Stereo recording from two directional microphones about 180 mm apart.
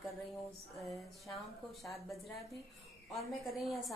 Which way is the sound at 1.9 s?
Centre (ahead or behind).